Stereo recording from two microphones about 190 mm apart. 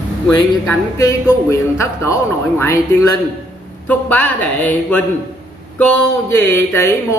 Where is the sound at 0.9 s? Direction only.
15° left (ahead or behind).